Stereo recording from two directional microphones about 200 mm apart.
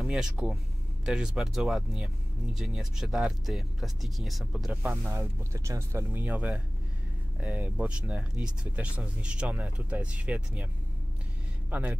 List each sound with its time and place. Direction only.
0.0 s speech: centre (ahead or behind)
5.1 s speech: 15° right (ahead or behind)
11.7 s speech: 10° right (ahead or behind)